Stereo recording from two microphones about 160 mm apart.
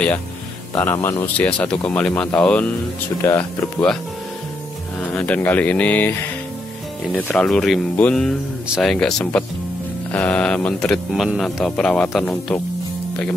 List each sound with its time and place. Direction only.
0.7 s speech: 15° left (ahead or behind)
5.0 s speech: 10° left (ahead or behind)
7.2 s speech: 10° left (ahead or behind)